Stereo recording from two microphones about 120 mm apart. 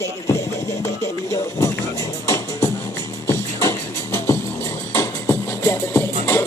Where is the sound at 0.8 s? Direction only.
25° left (ahead or behind).